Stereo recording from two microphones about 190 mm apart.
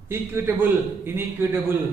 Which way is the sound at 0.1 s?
10° right (ahead or behind).